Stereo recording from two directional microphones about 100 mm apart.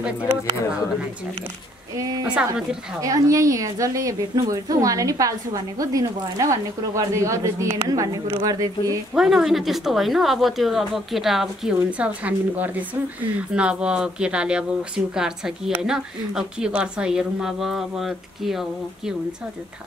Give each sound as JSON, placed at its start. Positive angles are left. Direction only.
{"t": 2.0, "sound": "a woman's voice", "side_deg": -40}
{"t": 2.2, "sound": "speech", "side_deg": -10}
{"t": 3.0, "sound": "a woman's voice", "side_deg": -35}
{"t": 9.1, "sound": "a woman's voice", "side_deg": -5}
{"t": 12.2, "sound": "a woman's voice", "side_deg": -15}